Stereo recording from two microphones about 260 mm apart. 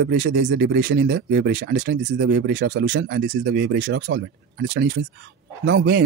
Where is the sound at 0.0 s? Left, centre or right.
Right.